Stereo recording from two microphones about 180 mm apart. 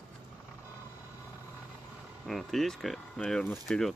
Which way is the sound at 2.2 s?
Centre (ahead or behind).